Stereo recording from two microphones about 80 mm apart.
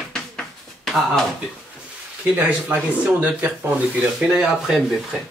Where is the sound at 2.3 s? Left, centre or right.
Centre.